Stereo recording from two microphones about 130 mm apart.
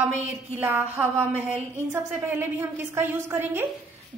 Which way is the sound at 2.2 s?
20° right (ahead or behind).